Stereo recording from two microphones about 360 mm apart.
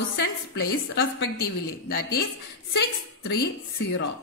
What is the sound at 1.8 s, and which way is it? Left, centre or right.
Speech, left.